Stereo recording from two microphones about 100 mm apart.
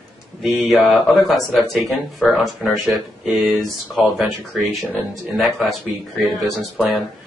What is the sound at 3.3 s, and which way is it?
Speech, 15° right (ahead or behind).